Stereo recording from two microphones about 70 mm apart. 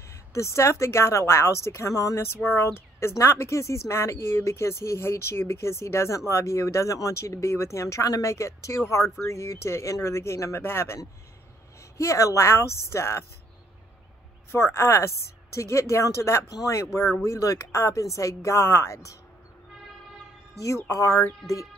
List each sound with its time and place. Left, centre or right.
0.1 s speech: left
2.4 s speech: left
12.0 s speech: left
14.5 s speech: left
20.9 s speech: left